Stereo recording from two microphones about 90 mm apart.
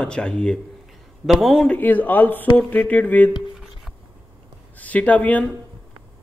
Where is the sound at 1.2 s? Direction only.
Centre (ahead or behind).